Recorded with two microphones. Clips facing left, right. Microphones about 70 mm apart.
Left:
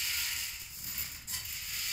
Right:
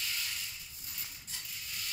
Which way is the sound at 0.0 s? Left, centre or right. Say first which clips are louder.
Even; left.